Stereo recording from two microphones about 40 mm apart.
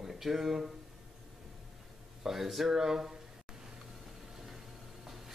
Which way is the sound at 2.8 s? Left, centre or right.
Centre.